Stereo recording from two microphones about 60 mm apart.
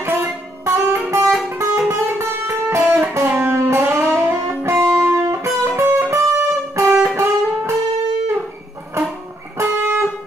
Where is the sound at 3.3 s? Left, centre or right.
Right.